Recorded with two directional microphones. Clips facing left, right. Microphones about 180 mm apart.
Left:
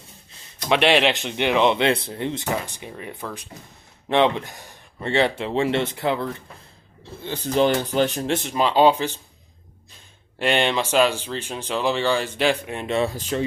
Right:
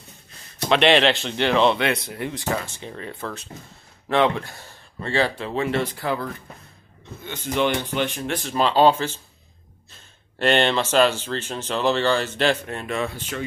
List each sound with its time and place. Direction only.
0.7 s a man's voice: 10° left (ahead or behind); by 8.3 s 40° left (ahead or behind)
8.3 s speech: 20° left (ahead or behind)
10.4 s speech: 10° left (ahead or behind)
12.8 s a man's voice: 30° left (ahead or behind)